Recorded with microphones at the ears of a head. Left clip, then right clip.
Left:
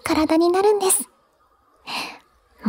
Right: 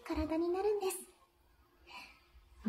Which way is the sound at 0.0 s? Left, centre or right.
Left.